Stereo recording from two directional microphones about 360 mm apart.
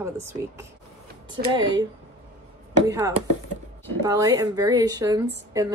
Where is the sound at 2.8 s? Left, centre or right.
Centre.